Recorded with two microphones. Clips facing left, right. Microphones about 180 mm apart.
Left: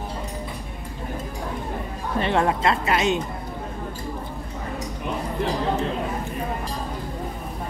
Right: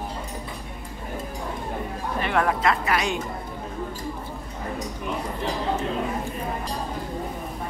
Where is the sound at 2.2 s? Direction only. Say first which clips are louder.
Left 2 dB; 25° left (ahead or behind).